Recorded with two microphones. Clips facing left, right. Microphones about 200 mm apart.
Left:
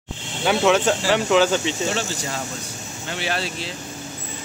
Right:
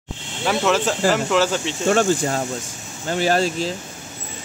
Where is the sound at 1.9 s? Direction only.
50° right (ahead or behind).